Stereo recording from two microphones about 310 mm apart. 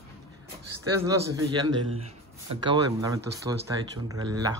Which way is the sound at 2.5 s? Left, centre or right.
Centre.